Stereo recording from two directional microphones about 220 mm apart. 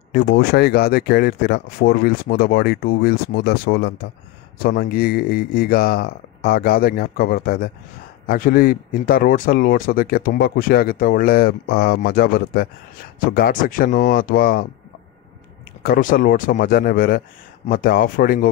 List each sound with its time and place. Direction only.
0.1 s speech: 45° left (ahead or behind)
15.8 s speech: 40° left (ahead or behind)